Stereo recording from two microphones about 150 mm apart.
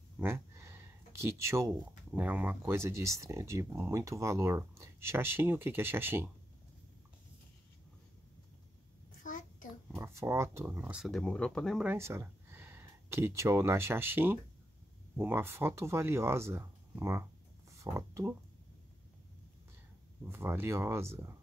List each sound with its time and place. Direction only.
0.2 s speech: 15° right (ahead or behind)
9.2 s a sound: 60° left (ahead or behind)
9.9 s speech: 20° right (ahead or behind); by 11.8 s 5° left (ahead or behind)
11.8 s speech: 15° right (ahead or behind)
20.2 s speech: 15° right (ahead or behind)